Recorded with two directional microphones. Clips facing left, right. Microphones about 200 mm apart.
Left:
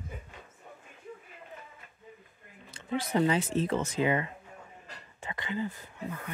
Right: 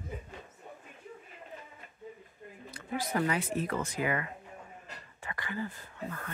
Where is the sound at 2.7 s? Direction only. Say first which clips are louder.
Left 4 dB; 25° left (ahead or behind).